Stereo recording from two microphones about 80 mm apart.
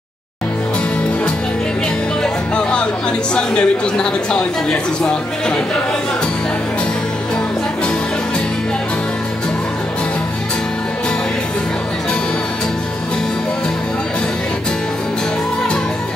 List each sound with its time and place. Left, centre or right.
2.5 s music: centre
3.3 s speech: centre